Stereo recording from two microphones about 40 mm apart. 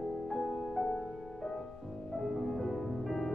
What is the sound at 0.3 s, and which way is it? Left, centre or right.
Music, centre.